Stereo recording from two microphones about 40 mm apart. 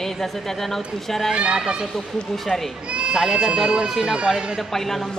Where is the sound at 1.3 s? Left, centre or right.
Right.